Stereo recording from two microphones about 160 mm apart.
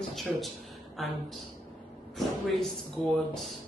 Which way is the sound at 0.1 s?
Centre (ahead or behind).